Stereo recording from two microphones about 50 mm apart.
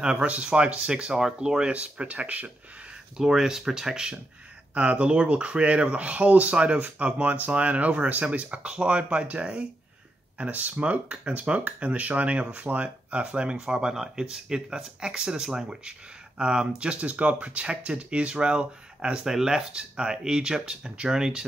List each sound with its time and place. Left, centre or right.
0.0 s speech: right
3.2 s speech: centre
4.7 s speech: right